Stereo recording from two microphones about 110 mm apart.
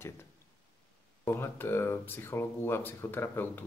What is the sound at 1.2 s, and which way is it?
Speech, 20° left (ahead or behind).